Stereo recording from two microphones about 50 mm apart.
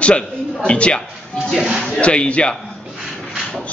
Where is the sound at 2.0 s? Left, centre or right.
Left.